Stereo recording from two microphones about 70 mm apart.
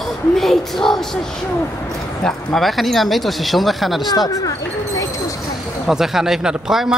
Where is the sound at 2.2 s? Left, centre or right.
Centre.